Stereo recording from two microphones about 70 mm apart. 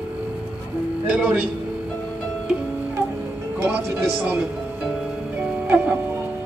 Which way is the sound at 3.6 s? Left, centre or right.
Right.